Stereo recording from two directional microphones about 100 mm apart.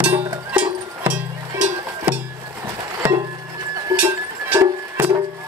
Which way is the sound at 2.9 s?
35° right (ahead or behind).